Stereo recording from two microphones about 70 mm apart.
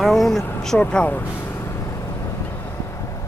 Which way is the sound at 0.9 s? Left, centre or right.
Left.